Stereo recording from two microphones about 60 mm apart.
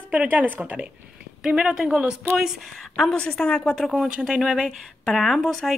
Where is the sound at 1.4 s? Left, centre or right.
Centre.